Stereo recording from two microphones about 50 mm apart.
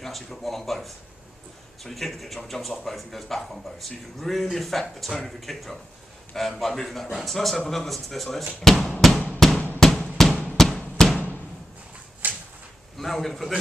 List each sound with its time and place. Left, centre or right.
0.0 s speech: centre
9.4 s drum: centre
11.0 s music: centre
12.2 s a sound: right
12.9 s a man's voice: centre